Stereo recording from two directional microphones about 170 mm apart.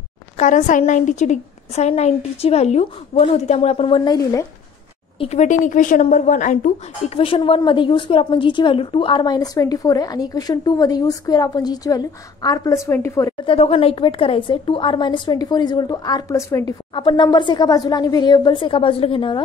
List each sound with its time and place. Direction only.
0.4 s a woman's voice: 45° left (ahead or behind); by 4.5 s 20° left (ahead or behind)
5.2 s a woman's voice: 40° left (ahead or behind)
7.2 s a woman's voice: 35° left (ahead or behind); by 13.3 s 15° left (ahead or behind)
13.5 s a woman's voice: 35° left (ahead or behind); by 16.7 s 15° left (ahead or behind)
16.9 s a woman's voice: 25° left (ahead or behind)